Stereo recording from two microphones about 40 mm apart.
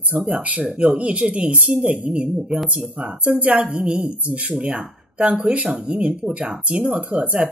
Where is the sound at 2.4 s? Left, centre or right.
Centre.